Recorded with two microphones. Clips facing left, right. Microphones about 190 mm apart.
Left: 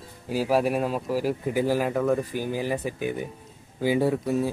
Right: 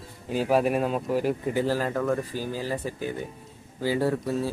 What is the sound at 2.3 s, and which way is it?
Speech, 15° left (ahead or behind).